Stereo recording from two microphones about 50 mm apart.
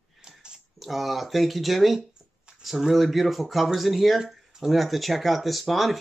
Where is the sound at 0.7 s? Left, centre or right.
Centre.